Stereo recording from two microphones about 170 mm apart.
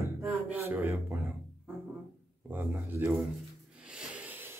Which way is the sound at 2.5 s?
15° right (ahead or behind).